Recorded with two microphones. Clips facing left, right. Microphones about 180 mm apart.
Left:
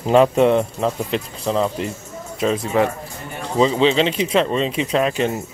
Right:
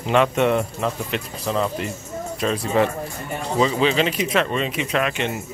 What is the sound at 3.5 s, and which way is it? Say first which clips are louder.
Speech: left 3 dB; 25° left (ahead or behind).